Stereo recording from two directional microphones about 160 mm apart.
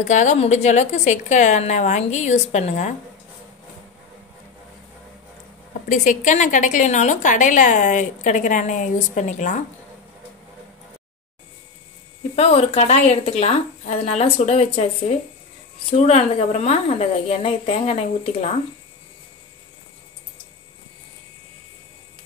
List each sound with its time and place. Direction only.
0.0 s a woman's voice: 45° left (ahead or behind)
5.9 s a woman's voice: 50° left (ahead or behind)
12.4 s a woman's voice: 40° left (ahead or behind)
15.9 s a woman's voice: 45° left (ahead or behind)